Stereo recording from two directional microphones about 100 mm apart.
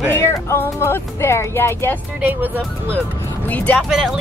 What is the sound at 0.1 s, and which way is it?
Speech, 30° left (ahead or behind).